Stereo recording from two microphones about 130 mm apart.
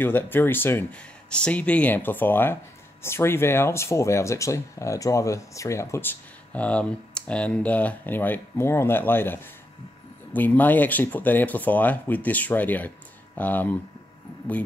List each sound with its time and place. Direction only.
0.0 s speech: 15° left (ahead or behind)